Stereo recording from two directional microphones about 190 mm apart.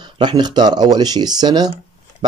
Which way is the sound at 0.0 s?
25° right (ahead or behind).